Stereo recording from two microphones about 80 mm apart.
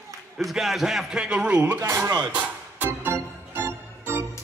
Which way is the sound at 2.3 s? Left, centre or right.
Centre.